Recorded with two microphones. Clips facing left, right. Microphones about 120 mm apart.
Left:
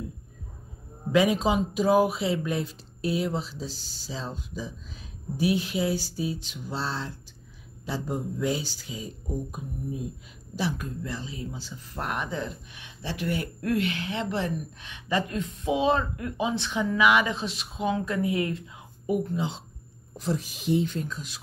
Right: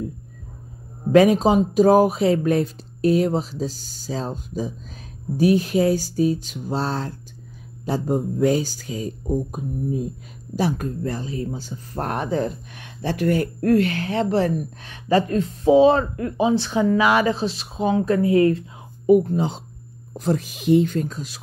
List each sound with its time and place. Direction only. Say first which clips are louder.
1.1 s a woman's voice: right 8 dB; 45° right (ahead or behind)
20.5 s speech: right 9 dB; 65° right (ahead or behind); by 21.4 s 40° right (ahead or behind)